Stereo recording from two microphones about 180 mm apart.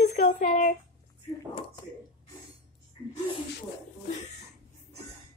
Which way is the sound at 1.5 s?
30° left (ahead or behind).